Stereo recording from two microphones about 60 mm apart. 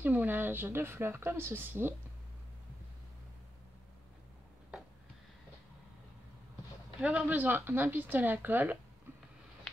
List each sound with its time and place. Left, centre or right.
0.0 s a woman's voice: right
7.0 s a woman's voice: centre